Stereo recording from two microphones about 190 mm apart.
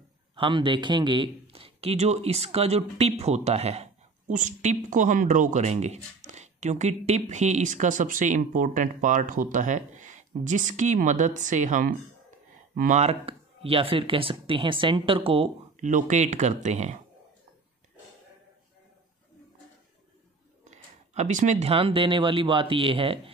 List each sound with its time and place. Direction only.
0.4 s speech: 25° right (ahead or behind)
20.6 s speech: 35° right (ahead or behind)